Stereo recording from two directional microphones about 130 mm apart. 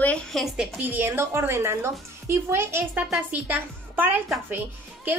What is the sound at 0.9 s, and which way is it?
A woman's voice, 15° right (ahead or behind).